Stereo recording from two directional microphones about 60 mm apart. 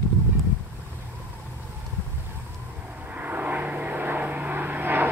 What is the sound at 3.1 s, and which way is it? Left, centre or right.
Vehicle, right.